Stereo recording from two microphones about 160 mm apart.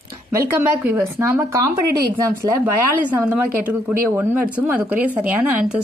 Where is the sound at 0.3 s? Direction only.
15° right (ahead or behind).